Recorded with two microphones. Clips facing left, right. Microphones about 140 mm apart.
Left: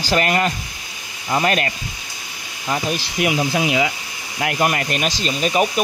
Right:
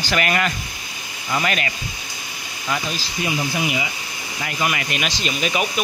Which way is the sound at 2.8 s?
65° left (ahead or behind).